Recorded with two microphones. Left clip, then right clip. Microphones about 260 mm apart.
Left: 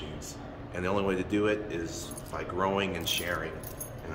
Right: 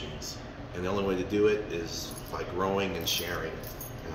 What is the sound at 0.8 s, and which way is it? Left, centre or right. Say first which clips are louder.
Speech: left 1 dB; left.